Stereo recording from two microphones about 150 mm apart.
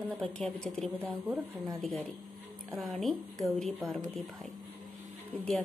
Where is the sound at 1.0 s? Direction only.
15° right (ahead or behind).